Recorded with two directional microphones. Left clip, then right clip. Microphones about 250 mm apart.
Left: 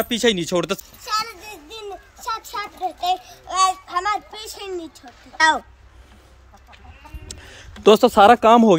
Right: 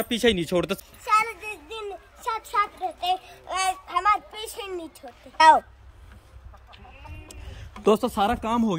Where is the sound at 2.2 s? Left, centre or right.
Centre.